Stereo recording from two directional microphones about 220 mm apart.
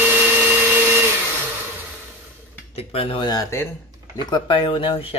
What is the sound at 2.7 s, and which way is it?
Speech, 25° left (ahead or behind).